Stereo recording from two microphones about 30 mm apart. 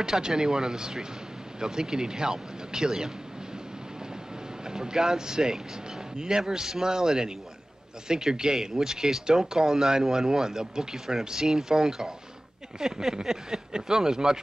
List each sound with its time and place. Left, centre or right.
0.0 s speech: right
4.6 s speech: right